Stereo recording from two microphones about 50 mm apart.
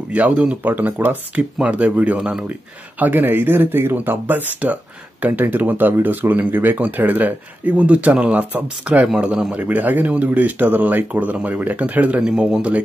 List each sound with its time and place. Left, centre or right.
0.1 s speech: right
0.6 s speech: right
1.6 s speech: right
3.0 s speech: right